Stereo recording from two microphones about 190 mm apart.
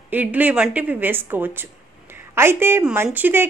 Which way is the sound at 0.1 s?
10° right (ahead or behind).